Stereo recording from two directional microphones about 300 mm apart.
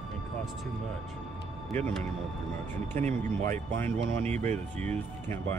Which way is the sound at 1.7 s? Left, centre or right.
Centre.